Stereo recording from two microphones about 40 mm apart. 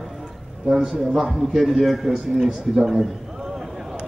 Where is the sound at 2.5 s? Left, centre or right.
Centre.